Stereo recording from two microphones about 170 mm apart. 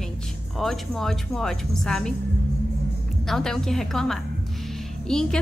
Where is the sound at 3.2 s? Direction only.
Centre (ahead or behind).